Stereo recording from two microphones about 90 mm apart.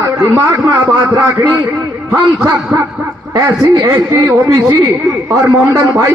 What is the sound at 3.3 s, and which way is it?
Speech, 55° right (ahead or behind).